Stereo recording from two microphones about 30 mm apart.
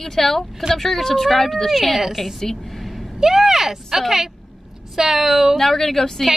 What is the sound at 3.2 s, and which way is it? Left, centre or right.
A woman's voice, centre.